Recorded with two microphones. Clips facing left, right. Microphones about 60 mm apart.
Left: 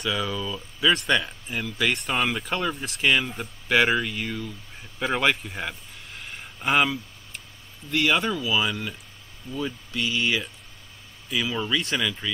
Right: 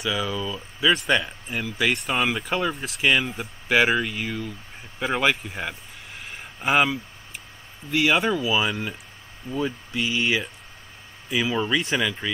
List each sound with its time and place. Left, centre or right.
0.0 s speech: centre
4.9 s a sound: centre
7.9 s speech: centre
9.9 s speech: centre